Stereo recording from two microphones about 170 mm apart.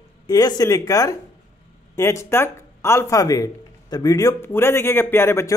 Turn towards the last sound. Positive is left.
turn(degrees=15)  # may be behind; listen again after turning